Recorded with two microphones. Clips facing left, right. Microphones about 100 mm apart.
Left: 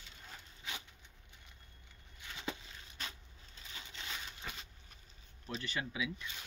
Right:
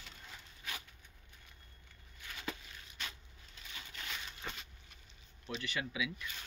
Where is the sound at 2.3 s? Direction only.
25° left (ahead or behind).